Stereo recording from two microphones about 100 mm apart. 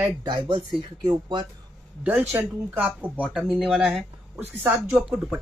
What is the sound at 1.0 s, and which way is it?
Speech, 50° right (ahead or behind).